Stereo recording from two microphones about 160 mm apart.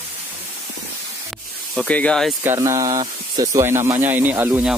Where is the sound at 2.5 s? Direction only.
20° right (ahead or behind).